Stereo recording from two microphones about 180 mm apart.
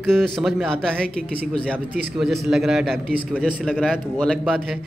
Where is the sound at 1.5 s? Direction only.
5° left (ahead or behind).